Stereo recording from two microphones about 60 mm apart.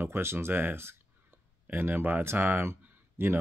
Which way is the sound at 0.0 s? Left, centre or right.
Right.